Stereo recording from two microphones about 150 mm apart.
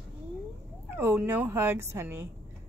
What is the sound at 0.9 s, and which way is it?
Speech, 15° right (ahead or behind).